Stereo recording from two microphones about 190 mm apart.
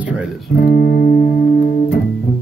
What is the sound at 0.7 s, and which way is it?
Music, 45° left (ahead or behind).